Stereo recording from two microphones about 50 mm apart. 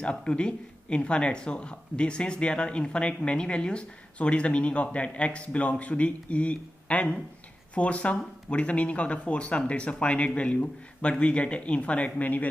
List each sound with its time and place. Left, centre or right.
0.0 s speech: centre